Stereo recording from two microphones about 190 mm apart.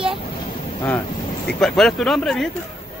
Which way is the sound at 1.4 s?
5° left (ahead or behind).